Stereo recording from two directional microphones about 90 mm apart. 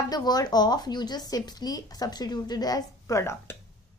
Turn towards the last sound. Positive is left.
turn(degrees=30)  # may be behind; listen again after turning